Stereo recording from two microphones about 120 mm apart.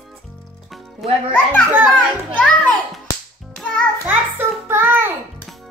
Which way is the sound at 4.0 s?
15° right (ahead or behind).